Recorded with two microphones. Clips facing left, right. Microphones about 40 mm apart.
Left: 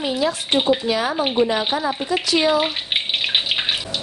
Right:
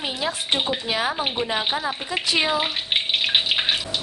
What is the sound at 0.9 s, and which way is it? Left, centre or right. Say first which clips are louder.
Speech: left 3 dB; centre.